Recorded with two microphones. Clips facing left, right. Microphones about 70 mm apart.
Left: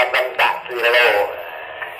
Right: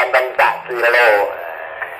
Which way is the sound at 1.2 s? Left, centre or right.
Right.